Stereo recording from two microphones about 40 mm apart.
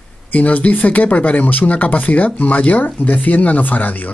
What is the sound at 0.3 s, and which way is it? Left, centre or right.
Speech, left.